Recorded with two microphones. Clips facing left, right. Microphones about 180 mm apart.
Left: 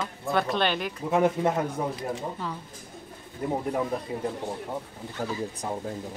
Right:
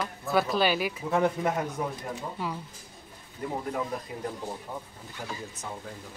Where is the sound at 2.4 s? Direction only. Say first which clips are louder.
Right 1 dB; 10° right (ahead or behind).